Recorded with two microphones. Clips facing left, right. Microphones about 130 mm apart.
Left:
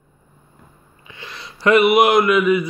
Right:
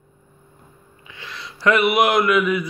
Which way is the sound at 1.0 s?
40° left (ahead or behind).